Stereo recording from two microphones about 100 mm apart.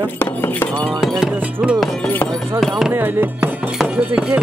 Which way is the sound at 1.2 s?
5° right (ahead or behind).